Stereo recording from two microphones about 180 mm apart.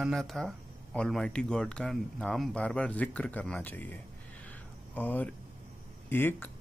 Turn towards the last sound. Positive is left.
turn(degrees=10)  # may be behind; listen again after turning